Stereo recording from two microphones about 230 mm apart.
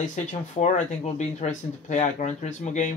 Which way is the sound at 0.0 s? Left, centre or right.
Left.